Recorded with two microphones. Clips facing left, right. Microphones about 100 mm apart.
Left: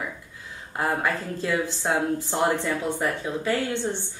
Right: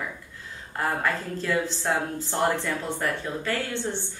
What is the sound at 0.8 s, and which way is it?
Speech, 15° left (ahead or behind).